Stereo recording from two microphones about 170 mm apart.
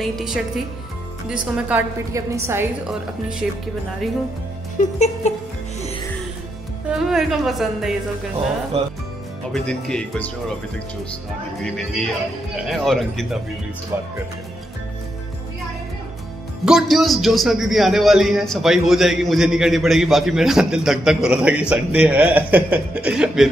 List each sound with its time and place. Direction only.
0.0 s a man's voice: centre (ahead or behind)
2.9 s a man's voice: 5° right (ahead or behind)
4.7 s music: 45° left (ahead or behind)
6.9 s a woman's voice: centre (ahead or behind)
9.5 s a man's voice: 5° left (ahead or behind)
11.6 s a man's voice: 5° left (ahead or behind)
16.6 s a man's voice: centre (ahead or behind)